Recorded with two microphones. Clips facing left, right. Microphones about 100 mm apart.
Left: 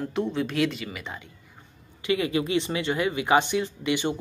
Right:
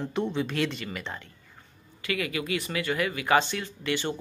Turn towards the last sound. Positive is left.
turn(degrees=15)  # may be behind; listen again after turning